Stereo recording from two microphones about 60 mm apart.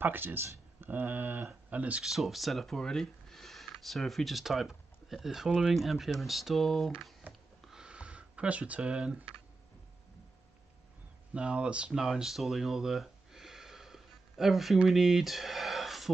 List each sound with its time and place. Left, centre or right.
0.0 s speech: right
2.0 s speech: centre
7.7 s a sound: centre
11.3 s speech: centre